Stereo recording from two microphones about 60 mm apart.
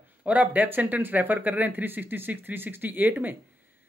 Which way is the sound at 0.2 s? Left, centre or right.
Right.